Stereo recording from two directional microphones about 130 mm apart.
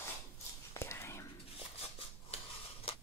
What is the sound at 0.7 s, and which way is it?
Whispering, 20° left (ahead or behind).